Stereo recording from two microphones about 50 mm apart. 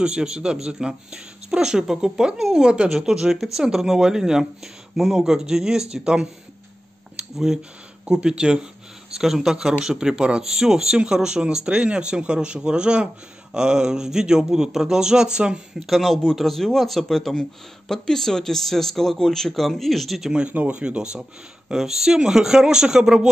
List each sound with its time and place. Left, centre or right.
0.0 s a man's voice: centre
3.1 s a man's voice: centre
7.3 s a man's voice: centre
9.2 s a man's voice: centre
15.8 s speech: centre
20.2 s speech: centre
20.5 s speech: right
20.8 s a man's voice: centre